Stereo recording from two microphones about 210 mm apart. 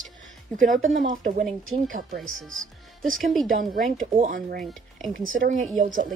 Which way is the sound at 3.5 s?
40° right (ahead or behind).